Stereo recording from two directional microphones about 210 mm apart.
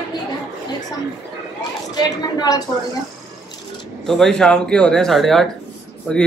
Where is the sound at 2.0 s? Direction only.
20° left (ahead or behind).